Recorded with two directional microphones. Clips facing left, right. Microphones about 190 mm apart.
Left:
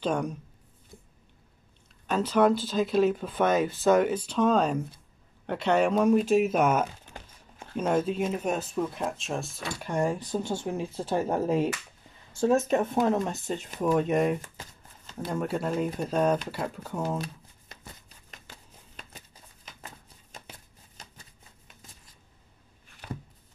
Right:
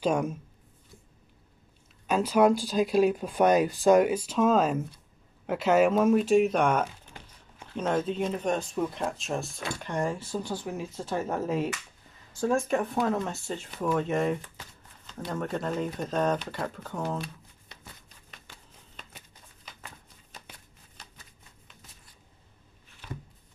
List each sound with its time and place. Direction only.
0.0 s speech: 5° right (ahead or behind)
2.0 s speech: 10° right (ahead or behind); by 17.2 s 10° left (ahead or behind)